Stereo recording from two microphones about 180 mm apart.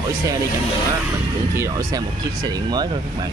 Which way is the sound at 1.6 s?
15° right (ahead or behind).